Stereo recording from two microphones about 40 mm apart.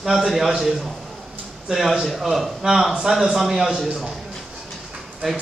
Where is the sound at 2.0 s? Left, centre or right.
Centre.